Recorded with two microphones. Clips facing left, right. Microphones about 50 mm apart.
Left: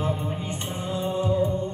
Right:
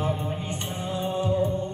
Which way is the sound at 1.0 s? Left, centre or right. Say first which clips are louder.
Left 1 dB; right.